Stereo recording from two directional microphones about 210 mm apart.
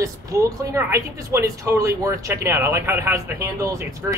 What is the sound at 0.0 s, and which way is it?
Speech, 15° right (ahead or behind).